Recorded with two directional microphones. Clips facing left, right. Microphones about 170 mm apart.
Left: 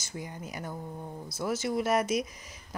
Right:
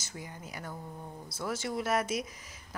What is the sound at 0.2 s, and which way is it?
A woman's voice, 20° left (ahead or behind).